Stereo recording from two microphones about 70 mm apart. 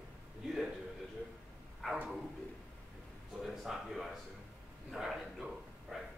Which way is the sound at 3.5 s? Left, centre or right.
Centre.